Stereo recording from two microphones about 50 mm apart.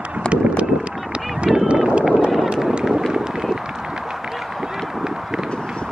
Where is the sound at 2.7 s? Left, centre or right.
Centre.